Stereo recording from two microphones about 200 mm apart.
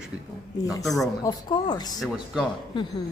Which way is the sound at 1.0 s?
20° left (ahead or behind).